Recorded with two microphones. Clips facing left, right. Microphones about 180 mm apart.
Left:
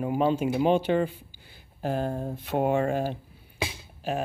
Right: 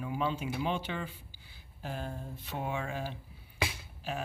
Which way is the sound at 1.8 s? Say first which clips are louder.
Left 11 dB; 65° left (ahead or behind).